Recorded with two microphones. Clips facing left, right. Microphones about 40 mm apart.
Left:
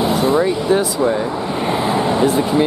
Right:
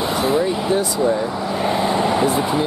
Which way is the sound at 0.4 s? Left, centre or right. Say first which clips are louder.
Left 3 dB; left.